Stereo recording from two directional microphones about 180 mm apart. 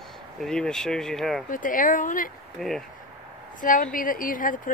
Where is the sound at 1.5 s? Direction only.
50° left (ahead or behind).